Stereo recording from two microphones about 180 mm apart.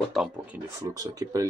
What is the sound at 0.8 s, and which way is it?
Speech, 20° right (ahead or behind).